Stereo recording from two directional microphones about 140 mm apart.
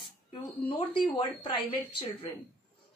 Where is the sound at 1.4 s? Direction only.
40° left (ahead or behind).